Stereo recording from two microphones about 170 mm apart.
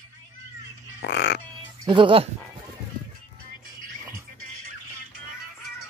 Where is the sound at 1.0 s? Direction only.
75° left (ahead or behind).